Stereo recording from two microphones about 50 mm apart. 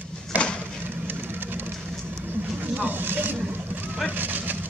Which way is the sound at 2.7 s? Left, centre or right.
Right.